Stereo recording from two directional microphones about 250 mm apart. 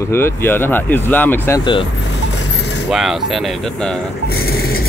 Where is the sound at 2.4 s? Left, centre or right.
Left.